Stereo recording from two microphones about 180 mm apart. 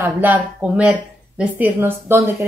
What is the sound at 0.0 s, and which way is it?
A woman's voice, 10° right (ahead or behind).